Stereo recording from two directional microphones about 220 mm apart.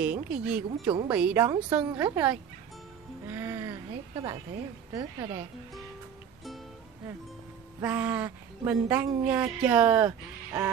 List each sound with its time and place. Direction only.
0.0 s a woman's voice: 5° right (ahead or behind)
7.8 s a woman's voice: 5° right (ahead or behind)